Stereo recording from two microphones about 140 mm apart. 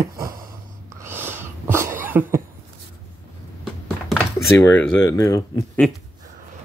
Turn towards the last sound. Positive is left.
turn(degrees=25)  # may be behind; listen again after turning